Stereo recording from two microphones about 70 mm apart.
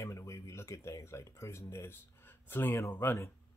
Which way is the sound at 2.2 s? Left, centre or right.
Left.